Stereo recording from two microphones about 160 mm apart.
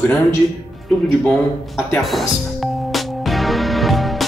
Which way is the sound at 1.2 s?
Centre (ahead or behind).